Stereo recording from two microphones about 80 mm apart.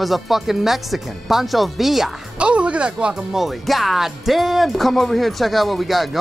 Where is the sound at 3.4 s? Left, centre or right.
Centre.